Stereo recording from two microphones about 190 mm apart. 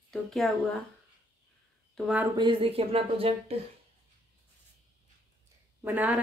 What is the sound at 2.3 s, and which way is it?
Speech, 25° right (ahead or behind).